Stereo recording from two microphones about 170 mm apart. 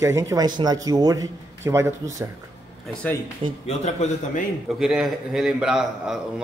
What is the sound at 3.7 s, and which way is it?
Speech, 45° left (ahead or behind).